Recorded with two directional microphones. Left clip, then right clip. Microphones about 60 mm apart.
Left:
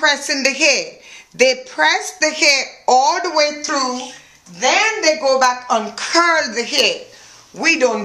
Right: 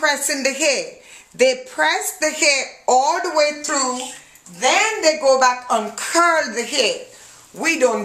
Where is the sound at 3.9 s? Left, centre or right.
Centre.